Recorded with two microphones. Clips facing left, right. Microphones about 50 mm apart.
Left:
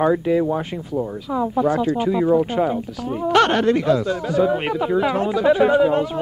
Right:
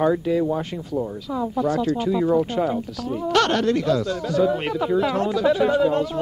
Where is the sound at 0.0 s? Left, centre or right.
Left.